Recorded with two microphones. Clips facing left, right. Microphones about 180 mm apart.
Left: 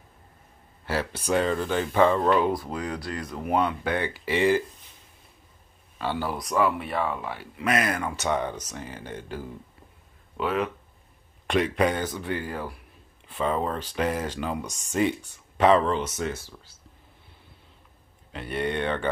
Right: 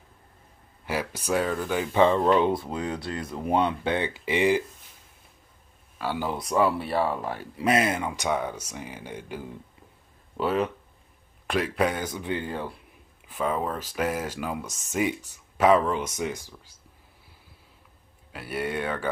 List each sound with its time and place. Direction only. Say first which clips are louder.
0.8 s speech: left 1 dB; 15° right (ahead or behind)
5.9 s speech: even; 10° right (ahead or behind)
6.3 s speech: right 2 dB; 30° right (ahead or behind); by 9.5 s 15° right (ahead or behind)
10.4 s speech: right 1 dB; 35° right (ahead or behind)
11.4 s speech: left 2 dB; centre (ahead or behind); by 12.7 s 25° right (ahead or behind)
13.3 s speech: left 1 dB; 5° right (ahead or behind)
18.3 s speech: left 2 dB; 5° right (ahead or behind)